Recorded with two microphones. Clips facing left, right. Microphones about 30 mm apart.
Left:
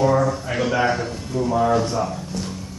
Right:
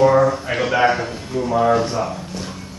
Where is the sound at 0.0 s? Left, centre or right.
Right.